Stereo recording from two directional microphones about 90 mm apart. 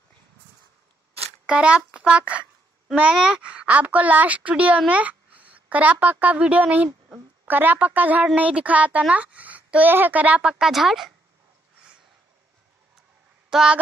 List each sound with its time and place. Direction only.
1.4 s a child's voice: 10° right (ahead or behind)
13.5 s speech: 5° right (ahead or behind)